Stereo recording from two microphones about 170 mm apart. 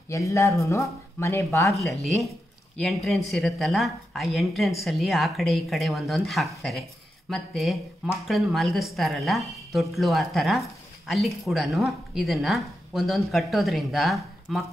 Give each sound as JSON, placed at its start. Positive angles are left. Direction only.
{"t": 0.1, "sound": "speech", "side_deg": 15}
{"t": 1.7, "sound": "speech", "side_deg": 0}